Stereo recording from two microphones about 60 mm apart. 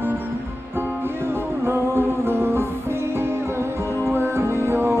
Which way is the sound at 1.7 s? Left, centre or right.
Right.